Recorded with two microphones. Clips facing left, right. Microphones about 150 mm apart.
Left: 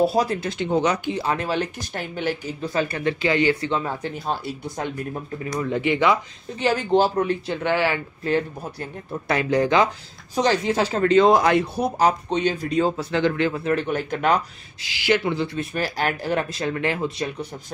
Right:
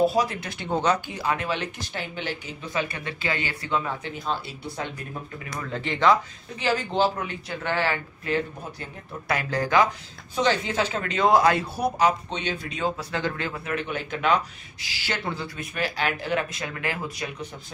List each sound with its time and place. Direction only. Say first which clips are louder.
0.0 s speech: left 2 dB; 35° left (ahead or behind)
5.5 s speech: left 8 dB; 15° left (ahead or behind)
7.6 s speech: left 4 dB; 15° left (ahead or behind)
8.2 s speech: left 7 dB; 35° left (ahead or behind)
9.3 s speech: left 4 dB; 20° left (ahead or behind)
10.3 s speech: left 3 dB; 40° left (ahead or behind); by 11.9 s 20° left (ahead or behind)
12.0 s speech: left 6 dB; 40° left (ahead or behind); by 13.7 s 25° left (ahead or behind)
13.7 s speech: left 5 dB; 40° left (ahead or behind)
14.8 s speech: left 11 dB; 15° left (ahead or behind)